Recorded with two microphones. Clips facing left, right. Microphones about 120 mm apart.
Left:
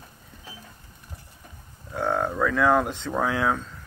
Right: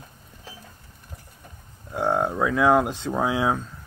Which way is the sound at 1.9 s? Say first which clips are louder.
Right 2 dB; 15° right (ahead or behind).